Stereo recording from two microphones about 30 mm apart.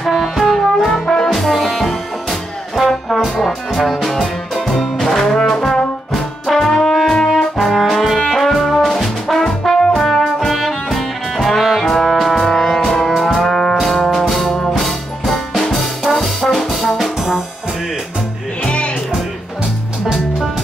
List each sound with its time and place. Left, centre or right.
0.1 s music: centre
0.5 s brass instrument: centre
1.4 s music: centre
2.7 s brass instrument: centre
10.5 s music: centre
12.1 s brass instrument: centre
13.1 s music: centre
15.3 s brass instrument: centre
17.0 s brass instrument: centre
18.6 s music: left